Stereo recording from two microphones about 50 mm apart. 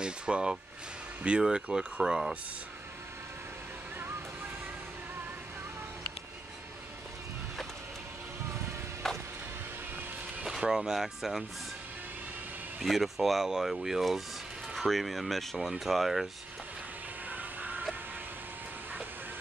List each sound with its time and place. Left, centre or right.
0.0 s speech: centre
9.0 s music: centre
10.7 s speech: centre
12.8 s speech: centre
17.3 s a sound: right